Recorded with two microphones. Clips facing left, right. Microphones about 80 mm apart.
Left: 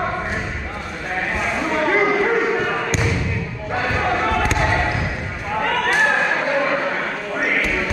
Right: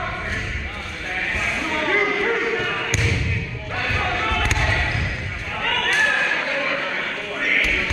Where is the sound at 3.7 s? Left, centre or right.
Left.